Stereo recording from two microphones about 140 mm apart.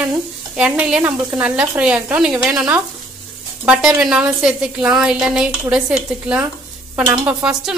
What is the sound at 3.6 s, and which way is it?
A woman's voice, 5° right (ahead or behind).